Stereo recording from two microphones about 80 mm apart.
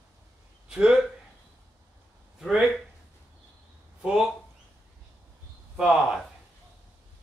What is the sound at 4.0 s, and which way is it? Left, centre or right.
Speech, centre.